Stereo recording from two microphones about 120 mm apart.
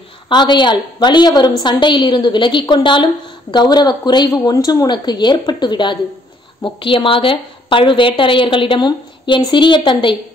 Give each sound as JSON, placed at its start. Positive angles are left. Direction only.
{"t": 0.3, "sound": "a woman's voice", "side_deg": 40}